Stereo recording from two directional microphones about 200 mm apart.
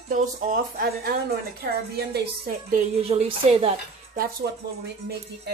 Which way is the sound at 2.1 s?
50° right (ahead or behind).